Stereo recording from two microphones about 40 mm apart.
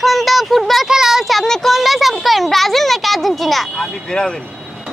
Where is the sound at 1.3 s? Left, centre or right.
Centre.